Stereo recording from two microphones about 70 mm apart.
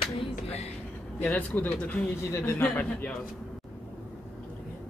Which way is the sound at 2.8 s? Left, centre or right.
Left.